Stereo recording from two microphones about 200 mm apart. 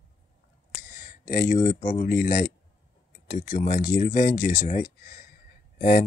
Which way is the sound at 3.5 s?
40° left (ahead or behind).